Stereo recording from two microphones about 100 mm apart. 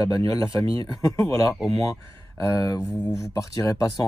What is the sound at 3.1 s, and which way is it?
Speech, 30° left (ahead or behind).